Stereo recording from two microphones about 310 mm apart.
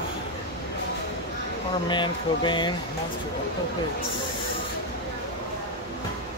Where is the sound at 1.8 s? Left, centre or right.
Centre.